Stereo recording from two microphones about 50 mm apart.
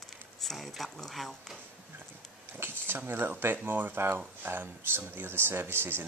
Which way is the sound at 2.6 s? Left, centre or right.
Right.